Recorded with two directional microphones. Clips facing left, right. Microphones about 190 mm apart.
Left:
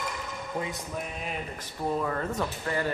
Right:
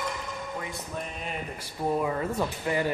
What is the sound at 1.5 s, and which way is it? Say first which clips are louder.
Speech: right 3 dB; 10° right (ahead or behind).